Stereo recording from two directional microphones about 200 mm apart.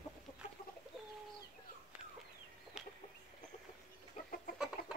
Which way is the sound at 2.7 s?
5° right (ahead or behind).